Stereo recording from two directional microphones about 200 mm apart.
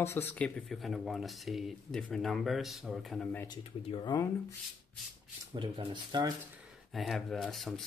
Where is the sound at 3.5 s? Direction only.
25° left (ahead or behind).